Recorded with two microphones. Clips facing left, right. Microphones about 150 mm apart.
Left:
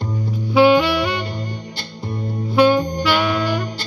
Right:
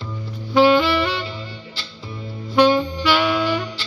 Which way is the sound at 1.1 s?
50° left (ahead or behind).